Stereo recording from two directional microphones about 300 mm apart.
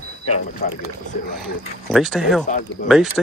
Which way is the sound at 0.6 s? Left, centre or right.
Left.